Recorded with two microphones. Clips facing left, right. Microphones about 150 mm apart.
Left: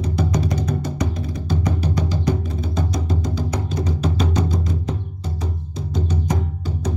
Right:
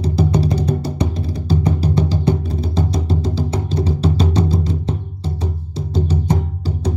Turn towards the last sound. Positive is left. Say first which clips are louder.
# right 4 dB
turn(degrees=-30)  # may be behind; listen again after turning